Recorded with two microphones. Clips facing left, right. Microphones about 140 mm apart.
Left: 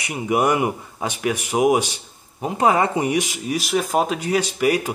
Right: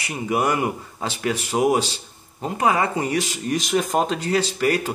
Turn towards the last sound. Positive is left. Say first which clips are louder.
# left 2 dB
turn(degrees=15)  # may be behind; listen again after turning